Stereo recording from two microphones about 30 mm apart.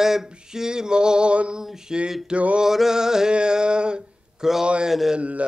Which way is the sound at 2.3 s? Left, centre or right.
Right.